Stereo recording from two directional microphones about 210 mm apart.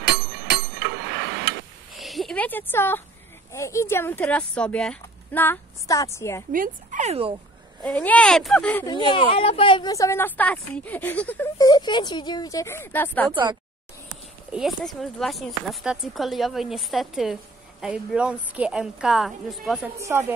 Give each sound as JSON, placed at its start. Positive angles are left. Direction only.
{"t": 0.0, "sound": "bicycle bell", "side_deg": -50}
{"t": 2.0, "sound": "a sound", "side_deg": 0}
{"t": 3.5, "sound": "speech", "side_deg": 15}
{"t": 6.5, "sound": "speech", "side_deg": -40}
{"t": 7.8, "sound": "speech", "side_deg": 5}
{"t": 8.8, "sound": "speech", "side_deg": 20}
{"t": 14.5, "sound": "speech", "side_deg": 0}
{"t": 20.0, "sound": "a woman's voice", "side_deg": -10}